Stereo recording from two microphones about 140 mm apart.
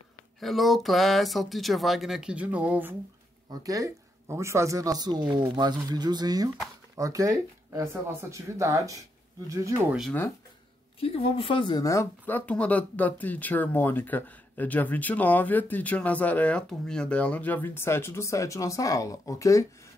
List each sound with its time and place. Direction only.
0.4 s speech: centre (ahead or behind)
3.6 s speech: 25° right (ahead or behind)
11.0 s speech: 40° left (ahead or behind)
11.8 s speech: 20° left (ahead or behind)